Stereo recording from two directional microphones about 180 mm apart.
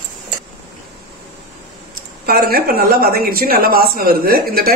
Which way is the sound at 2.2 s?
55° right (ahead or behind).